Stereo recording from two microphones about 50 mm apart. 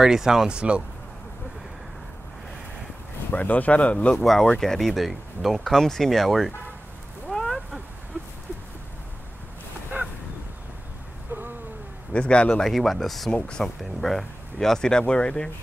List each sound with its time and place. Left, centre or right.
0.0 s speech: centre
3.3 s speech: left
4.2 s speech: centre
7.2 s a sound: centre
12.1 s speech: left
12.6 s speech: centre
13.3 s speech: centre
14.0 s speech: centre